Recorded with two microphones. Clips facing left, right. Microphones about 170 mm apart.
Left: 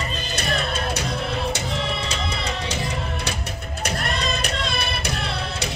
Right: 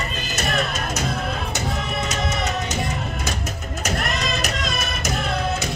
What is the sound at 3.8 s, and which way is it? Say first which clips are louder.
Music: right 1 dB; 30° left (ahead or behind).